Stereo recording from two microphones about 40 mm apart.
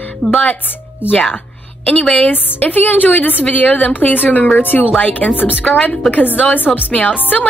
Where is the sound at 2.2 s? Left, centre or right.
Left.